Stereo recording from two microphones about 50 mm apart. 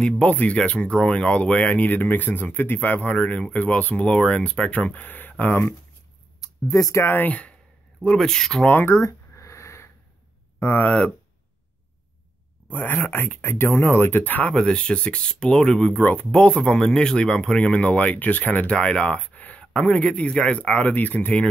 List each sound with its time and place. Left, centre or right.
0.2 s speech: left
6.7 s speech: left
7.2 s speech: left
8.0 s speech: centre
8.8 s a sound: left
10.6 s speech: left
10.9 s speech: centre
12.7 s speech: left
14.5 s speech: centre
15.8 s speech: left
16.3 s speech: left
16.8 s speech: centre